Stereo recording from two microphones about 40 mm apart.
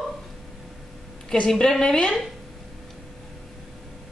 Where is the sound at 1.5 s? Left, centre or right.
Centre.